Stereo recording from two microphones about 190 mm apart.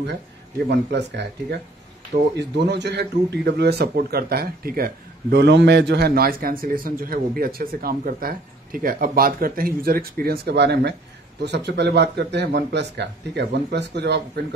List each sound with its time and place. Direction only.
0.7 s speech: 65° right (ahead or behind)